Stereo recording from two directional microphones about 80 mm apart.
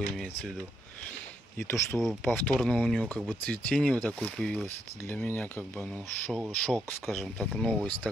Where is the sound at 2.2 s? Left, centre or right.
Left.